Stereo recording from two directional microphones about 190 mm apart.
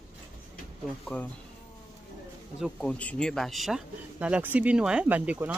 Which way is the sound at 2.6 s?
5° left (ahead or behind).